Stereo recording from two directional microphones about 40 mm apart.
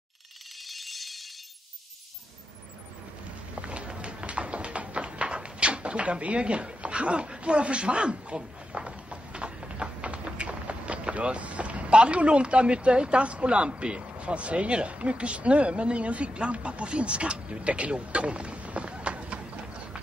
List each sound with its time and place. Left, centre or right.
0.7 s ratchet: centre
3.5 s tap: right